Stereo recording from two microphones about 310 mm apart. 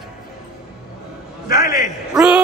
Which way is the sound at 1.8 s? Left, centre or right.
Centre.